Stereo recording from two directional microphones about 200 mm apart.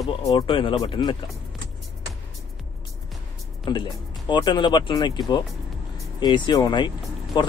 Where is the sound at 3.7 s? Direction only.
20° left (ahead or behind).